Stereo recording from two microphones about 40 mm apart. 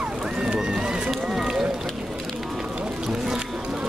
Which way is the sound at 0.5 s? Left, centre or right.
Centre.